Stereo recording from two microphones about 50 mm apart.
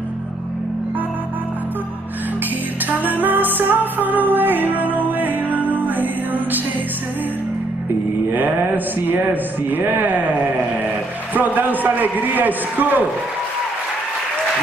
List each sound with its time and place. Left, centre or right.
2.9 s music: right
8.3 s speech: right
11.3 s speech: right